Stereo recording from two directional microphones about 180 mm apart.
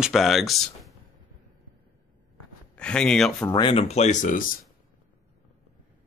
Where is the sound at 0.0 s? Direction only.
Centre (ahead or behind).